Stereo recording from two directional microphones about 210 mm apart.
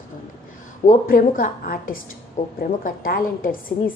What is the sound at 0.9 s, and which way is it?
A woman's voice, 40° left (ahead or behind).